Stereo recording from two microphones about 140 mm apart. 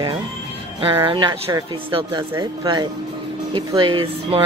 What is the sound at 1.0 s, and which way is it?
Speech, 35° right (ahead or behind).